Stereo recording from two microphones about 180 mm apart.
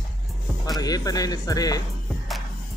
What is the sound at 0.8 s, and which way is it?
Speech, 20° left (ahead or behind).